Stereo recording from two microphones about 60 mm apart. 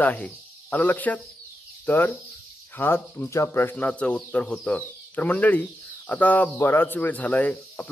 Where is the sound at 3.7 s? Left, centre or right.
Left.